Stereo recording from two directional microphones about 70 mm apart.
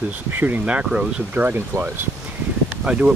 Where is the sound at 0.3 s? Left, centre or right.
Right.